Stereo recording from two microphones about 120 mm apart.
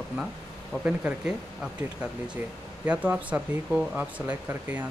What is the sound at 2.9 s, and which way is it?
Speech, 10° right (ahead or behind).